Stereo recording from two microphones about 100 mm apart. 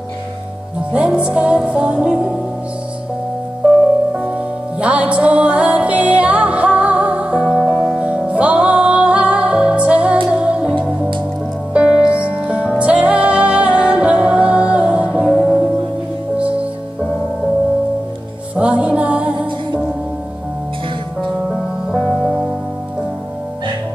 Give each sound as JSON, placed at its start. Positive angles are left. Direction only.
{"t": 0.9, "sound": "music", "side_deg": -10}
{"t": 3.6, "sound": "music", "side_deg": -5}
{"t": 7.4, "sound": "music", "side_deg": 20}
{"t": 8.0, "sound": "music", "side_deg": -10}
{"t": 18.6, "sound": "music", "side_deg": -10}
{"t": 21.9, "sound": "music", "side_deg": 10}